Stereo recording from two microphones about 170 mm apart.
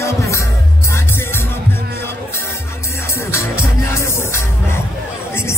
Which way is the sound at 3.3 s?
15° left (ahead or behind).